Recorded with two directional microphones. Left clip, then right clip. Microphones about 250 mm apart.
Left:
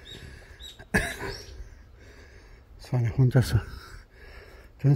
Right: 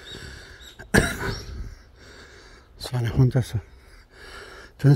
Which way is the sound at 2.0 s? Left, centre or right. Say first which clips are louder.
Right 6 dB; centre.